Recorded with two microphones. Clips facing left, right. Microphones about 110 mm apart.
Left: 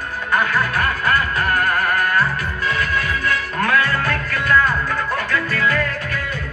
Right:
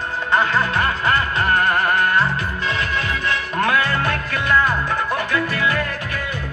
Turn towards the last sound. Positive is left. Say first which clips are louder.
# left 1 dB
turn(degrees=-15)  # may be behind; listen again after turning